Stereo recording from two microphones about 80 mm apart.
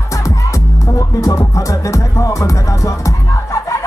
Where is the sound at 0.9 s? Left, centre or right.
Left.